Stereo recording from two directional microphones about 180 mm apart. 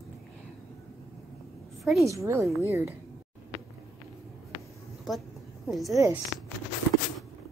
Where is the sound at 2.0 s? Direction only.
15° right (ahead or behind).